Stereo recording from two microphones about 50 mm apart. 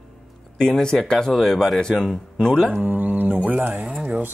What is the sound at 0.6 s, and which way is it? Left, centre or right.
Speech, centre.